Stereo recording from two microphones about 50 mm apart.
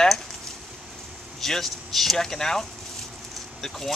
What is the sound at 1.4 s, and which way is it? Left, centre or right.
Speech, centre.